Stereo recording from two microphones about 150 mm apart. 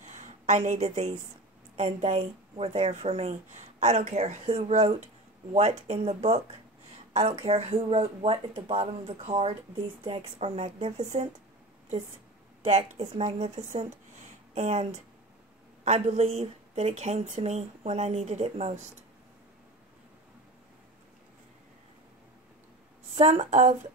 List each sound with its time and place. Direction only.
0.0 s a sound: 55° right (ahead or behind)
1.8 s speech: 50° right (ahead or behind)
12.6 s speech: 50° right (ahead or behind)
23.1 s speech: 50° right (ahead or behind)